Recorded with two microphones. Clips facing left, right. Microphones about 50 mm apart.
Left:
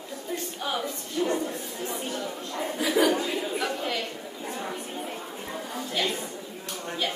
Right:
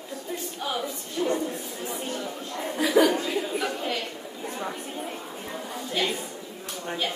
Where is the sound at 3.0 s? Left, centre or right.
Right.